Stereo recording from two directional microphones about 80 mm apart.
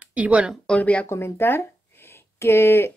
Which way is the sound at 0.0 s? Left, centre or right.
Centre.